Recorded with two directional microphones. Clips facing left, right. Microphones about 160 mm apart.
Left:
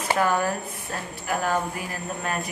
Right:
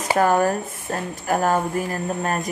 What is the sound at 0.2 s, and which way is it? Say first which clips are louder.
A woman's voice: right 7 dB; 45° right (ahead or behind).